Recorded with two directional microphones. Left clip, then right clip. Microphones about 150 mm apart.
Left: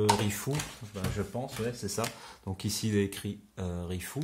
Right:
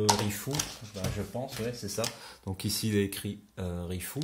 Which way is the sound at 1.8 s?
35° left (ahead or behind).